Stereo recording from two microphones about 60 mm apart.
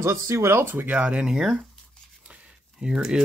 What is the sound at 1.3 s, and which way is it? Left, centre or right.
Speech, centre.